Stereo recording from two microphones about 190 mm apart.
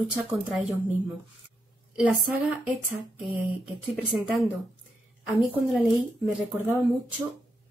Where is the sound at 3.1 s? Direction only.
Centre (ahead or behind).